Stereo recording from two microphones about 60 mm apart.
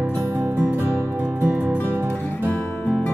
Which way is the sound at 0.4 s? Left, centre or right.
Right.